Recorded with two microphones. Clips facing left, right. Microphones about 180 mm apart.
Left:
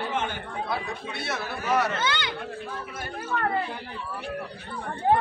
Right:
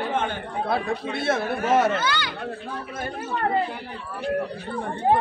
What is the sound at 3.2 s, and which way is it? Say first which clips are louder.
Speech: right 3 dB; 30° right (ahead or behind).